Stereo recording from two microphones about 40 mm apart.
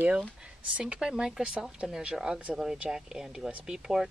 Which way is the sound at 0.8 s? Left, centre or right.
Centre.